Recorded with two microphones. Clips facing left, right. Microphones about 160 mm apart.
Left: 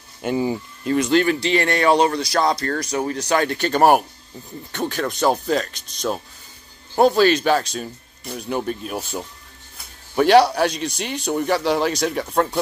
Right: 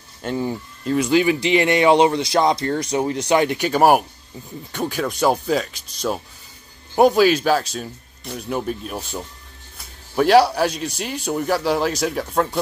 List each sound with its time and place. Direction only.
0.2 s speech: 10° left (ahead or behind)
0.9 s a man's voice: 10° right (ahead or behind)